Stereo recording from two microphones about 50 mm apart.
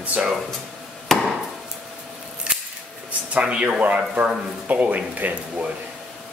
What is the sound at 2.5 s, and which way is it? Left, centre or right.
Scissors, centre.